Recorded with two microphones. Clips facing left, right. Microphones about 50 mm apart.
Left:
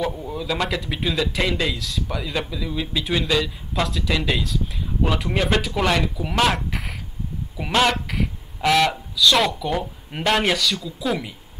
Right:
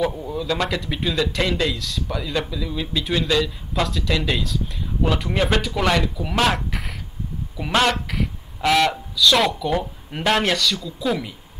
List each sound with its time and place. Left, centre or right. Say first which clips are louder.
0.0 s speech: right 2 dB; centre